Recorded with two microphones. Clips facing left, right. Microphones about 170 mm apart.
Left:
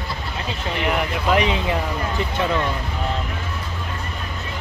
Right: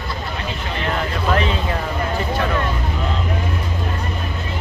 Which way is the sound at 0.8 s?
15° left (ahead or behind).